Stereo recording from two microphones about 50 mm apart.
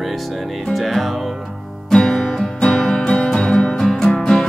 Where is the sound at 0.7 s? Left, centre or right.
Centre.